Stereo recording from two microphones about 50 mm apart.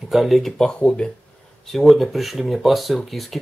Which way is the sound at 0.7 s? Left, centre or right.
Centre.